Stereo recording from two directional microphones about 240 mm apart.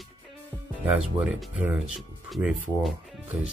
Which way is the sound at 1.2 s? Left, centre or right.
Centre.